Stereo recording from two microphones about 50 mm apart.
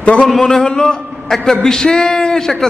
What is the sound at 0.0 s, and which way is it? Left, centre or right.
Speech, left.